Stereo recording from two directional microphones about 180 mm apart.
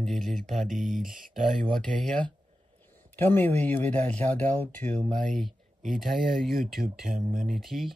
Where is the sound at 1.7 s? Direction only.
5° left (ahead or behind).